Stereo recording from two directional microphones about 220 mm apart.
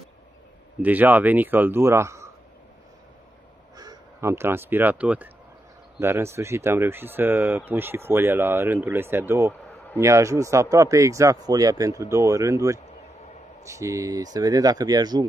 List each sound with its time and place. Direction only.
0.8 s speech: 10° right (ahead or behind)
3.7 s speech: 15° right (ahead or behind)